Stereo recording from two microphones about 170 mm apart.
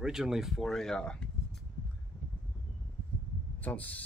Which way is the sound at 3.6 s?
10° left (ahead or behind).